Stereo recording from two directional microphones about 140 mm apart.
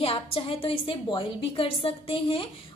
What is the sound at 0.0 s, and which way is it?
A woman's voice, 40° left (ahead or behind).